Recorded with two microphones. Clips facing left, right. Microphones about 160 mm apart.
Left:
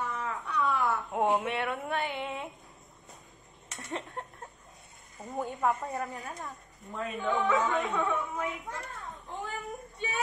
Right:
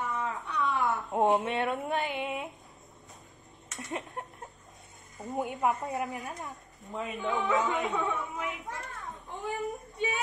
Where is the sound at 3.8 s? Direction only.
15° right (ahead or behind).